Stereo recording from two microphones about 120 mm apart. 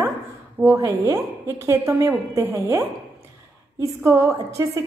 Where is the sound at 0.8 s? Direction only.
25° right (ahead or behind).